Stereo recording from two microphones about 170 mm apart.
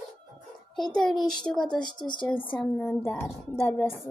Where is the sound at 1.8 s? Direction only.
25° left (ahead or behind).